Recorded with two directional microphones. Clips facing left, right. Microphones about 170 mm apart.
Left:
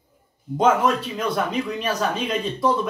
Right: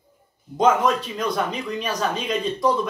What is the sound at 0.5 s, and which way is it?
Speech, 5° left (ahead or behind).